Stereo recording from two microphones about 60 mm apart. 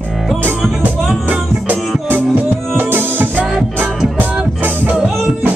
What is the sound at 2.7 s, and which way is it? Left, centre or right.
Music, right.